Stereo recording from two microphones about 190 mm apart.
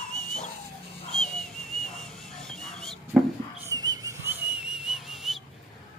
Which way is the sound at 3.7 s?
20° right (ahead or behind).